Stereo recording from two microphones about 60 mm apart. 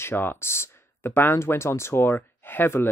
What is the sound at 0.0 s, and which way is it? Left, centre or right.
Speech, left.